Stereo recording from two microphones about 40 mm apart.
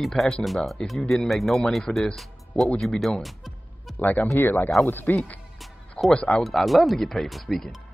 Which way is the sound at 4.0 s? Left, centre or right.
Left.